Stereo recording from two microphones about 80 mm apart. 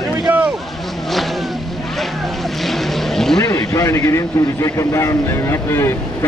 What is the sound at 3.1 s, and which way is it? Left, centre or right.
Vehicle, centre.